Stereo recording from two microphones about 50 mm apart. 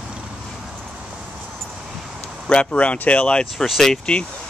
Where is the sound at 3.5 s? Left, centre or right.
Centre.